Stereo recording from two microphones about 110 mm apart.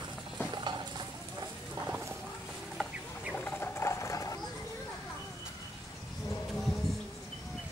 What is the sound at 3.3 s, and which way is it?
Rodents, 15° left (ahead or behind).